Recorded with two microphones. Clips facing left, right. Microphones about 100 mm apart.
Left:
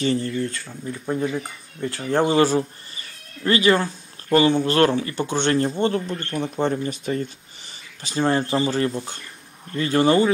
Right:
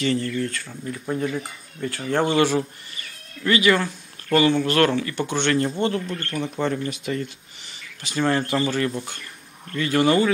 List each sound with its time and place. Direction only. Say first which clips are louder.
0.0 s speech: left 1 dB; 25° left (ahead or behind)
0.7 s speech: left 1 dB; 10° left (ahead or behind); by 10.3 s 30° left (ahead or behind)